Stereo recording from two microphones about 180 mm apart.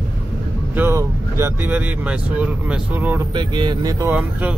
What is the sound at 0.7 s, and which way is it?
Speech, 15° right (ahead or behind).